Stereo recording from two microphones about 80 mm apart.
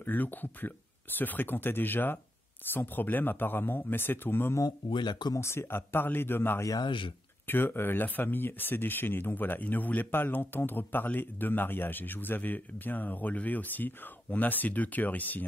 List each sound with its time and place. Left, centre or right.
0.0 s speech: left
4.6 s speech: left
5.4 s speech: left
6.8 s speech: left
7.4 s speech: left